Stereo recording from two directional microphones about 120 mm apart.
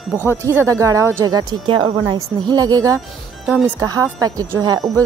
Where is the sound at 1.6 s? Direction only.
40° right (ahead or behind).